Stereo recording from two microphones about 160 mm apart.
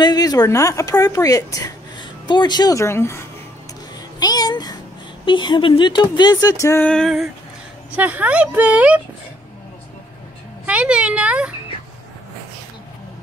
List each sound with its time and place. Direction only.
0.0 s a child's voice: 25° left (ahead or behind)
6.9 s female singing: centre (ahead or behind)
7.9 s speech: 10° right (ahead or behind)
10.6 s speech: 10° right (ahead or behind)